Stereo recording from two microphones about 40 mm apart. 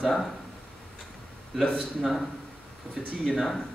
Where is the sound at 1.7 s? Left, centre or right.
Centre.